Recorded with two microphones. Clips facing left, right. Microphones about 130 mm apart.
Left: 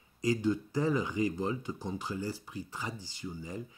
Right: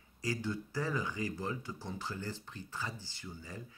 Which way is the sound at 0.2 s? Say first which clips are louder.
Left 8 dB; 20° left (ahead or behind).